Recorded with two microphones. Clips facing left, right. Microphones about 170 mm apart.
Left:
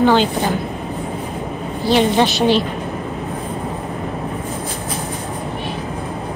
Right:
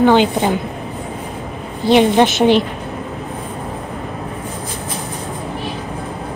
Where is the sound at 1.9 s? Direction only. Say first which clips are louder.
Right 3 dB; 20° right (ahead or behind).